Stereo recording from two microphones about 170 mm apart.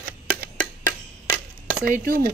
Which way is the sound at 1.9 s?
55° right (ahead or behind).